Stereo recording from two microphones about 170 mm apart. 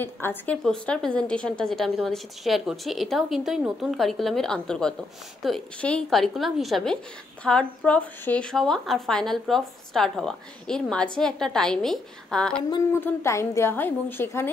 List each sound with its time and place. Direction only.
0.0 s speech: 10° left (ahead or behind)
12.6 s a sound: 25° left (ahead or behind)
13.0 s a woman's voice: 15° left (ahead or behind)